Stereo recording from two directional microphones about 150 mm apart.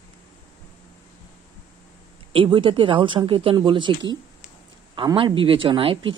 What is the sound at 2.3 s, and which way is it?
Speech, 35° right (ahead or behind).